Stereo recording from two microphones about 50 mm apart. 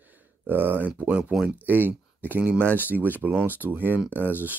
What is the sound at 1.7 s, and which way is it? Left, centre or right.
Speech, right.